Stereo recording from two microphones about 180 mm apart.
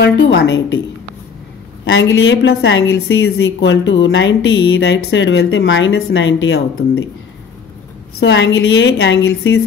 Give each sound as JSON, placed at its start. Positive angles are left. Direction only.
{"t": 0.0, "sound": "a woman's voice", "side_deg": 85}
{"t": 0.4, "sound": "a woman's voice", "side_deg": 70}
{"t": 1.9, "sound": "a woman's voice", "side_deg": 90}
{"t": 8.2, "sound": "a woman's voice", "side_deg": 90}